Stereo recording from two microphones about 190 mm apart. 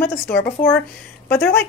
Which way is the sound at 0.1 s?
55° left (ahead or behind).